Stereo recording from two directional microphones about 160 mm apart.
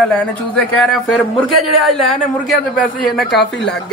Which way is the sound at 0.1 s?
5° left (ahead or behind).